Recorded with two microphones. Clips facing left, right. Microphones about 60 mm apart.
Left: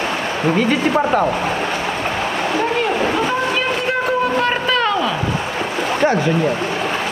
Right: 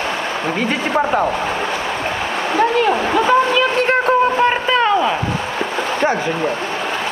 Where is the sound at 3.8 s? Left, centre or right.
Right.